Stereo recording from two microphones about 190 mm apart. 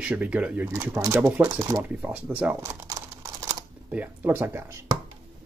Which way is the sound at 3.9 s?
10° right (ahead or behind).